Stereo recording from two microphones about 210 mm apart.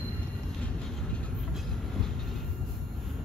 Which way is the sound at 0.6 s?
5° left (ahead or behind).